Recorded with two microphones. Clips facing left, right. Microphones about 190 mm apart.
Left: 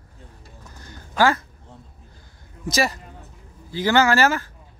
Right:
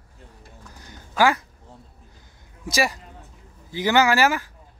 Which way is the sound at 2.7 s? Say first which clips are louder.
Left 1 dB; 10° right (ahead or behind).